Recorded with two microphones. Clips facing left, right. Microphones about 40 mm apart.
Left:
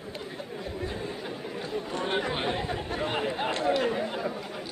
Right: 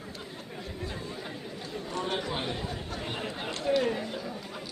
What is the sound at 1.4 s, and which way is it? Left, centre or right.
Chatter, left.